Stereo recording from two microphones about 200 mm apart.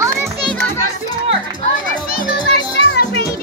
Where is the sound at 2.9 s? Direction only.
60° left (ahead or behind).